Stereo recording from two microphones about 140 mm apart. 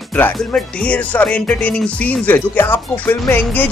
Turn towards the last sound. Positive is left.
turn(degrees=15)  # may be behind; listen again after turning